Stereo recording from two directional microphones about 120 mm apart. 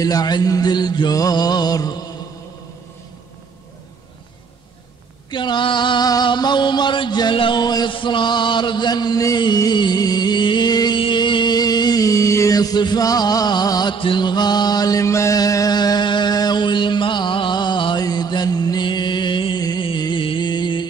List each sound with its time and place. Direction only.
0.0 s music: 35° left (ahead or behind)
5.3 s a sound: 40° left (ahead or behind)
13.9 s mantra: 45° left (ahead or behind)